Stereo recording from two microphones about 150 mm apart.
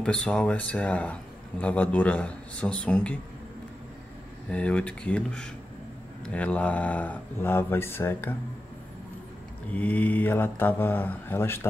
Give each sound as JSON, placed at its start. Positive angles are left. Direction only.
{"t": 0.0, "sound": "speech", "side_deg": 5}
{"t": 4.5, "sound": "speech", "side_deg": 10}
{"t": 9.7, "sound": "speech", "side_deg": 10}